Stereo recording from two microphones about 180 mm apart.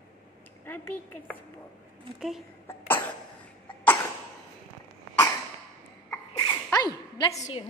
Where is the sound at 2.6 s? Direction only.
10° left (ahead or behind).